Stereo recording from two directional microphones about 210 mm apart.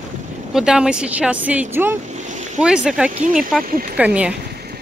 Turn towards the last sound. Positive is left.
turn(degrees=-5)  # may be behind; listen again after turning